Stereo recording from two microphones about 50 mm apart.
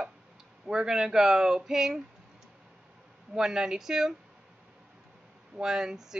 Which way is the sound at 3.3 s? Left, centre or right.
Centre.